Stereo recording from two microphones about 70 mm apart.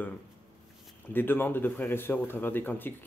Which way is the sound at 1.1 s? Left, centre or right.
Left.